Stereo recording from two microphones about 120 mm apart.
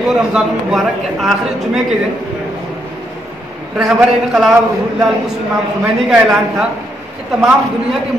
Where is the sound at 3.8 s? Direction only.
Centre (ahead or behind).